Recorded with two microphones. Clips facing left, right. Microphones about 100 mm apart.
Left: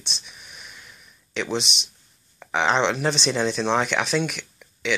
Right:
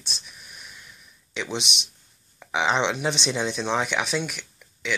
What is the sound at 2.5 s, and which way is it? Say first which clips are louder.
Speech: left 2 dB; 10° right (ahead or behind).